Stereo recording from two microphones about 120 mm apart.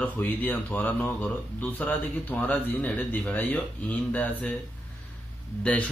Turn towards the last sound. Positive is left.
turn(degrees=10)  # may be behind; listen again after turning